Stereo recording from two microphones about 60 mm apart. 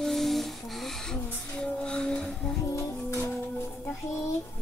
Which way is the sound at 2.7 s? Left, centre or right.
Left.